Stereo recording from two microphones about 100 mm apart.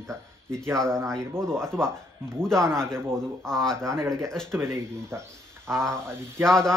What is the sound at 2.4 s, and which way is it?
A man's voice, 5° left (ahead or behind).